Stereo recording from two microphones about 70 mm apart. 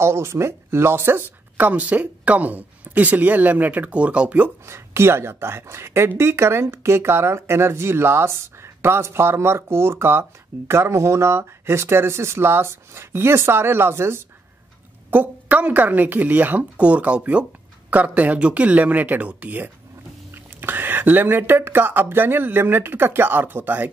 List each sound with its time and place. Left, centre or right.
0.0 s a woman's voice: right
1.7 s speech: right
4.6 s a woman's voice: right
15.0 s speech: right